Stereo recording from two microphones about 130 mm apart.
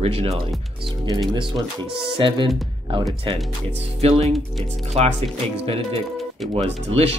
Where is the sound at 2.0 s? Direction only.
40° right (ahead or behind).